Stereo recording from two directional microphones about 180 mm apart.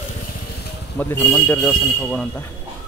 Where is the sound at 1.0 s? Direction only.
10° left (ahead or behind).